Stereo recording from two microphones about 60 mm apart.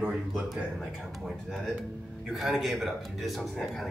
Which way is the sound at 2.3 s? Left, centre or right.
Centre.